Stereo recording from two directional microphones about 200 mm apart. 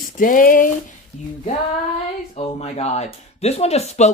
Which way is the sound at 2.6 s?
35° left (ahead or behind).